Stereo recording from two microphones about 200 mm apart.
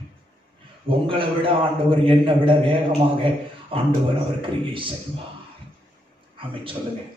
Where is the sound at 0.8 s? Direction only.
25° right (ahead or behind).